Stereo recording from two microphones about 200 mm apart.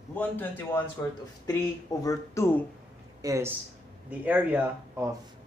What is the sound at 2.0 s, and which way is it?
Speech, 15° left (ahead or behind).